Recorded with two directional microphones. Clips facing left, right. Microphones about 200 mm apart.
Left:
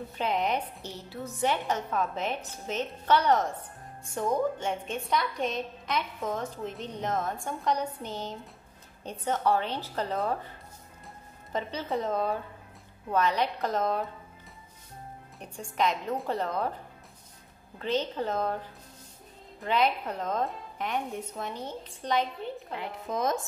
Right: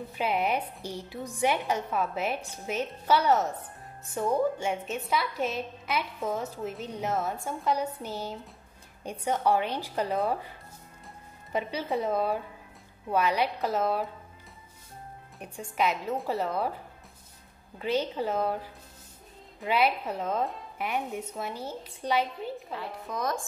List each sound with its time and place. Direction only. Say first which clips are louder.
0.1 s a woman's voice: right 1 dB; 10° right (ahead or behind)
11.5 s a woman's voice: right 1 dB; 10° right (ahead or behind)
15.3 s a woman's voice: right 1 dB; 5° right (ahead or behind)
17.7 s a woman's voice: right 1 dB; 10° right (ahead or behind)
22.7 s speech: left 2 dB; 20° left (ahead or behind)